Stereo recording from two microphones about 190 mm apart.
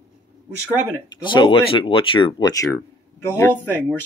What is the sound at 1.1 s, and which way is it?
Speech, 25° left (ahead or behind).